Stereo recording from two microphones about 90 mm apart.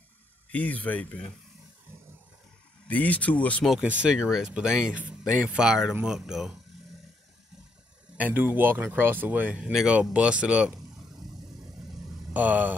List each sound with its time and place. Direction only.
0.5 s speech: 15° left (ahead or behind)
2.9 s speech: 15° left (ahead or behind)
3.8 s speech: 15° right (ahead or behind)
8.2 s speech: 20° right (ahead or behind)
12.4 s speech: 15° right (ahead or behind)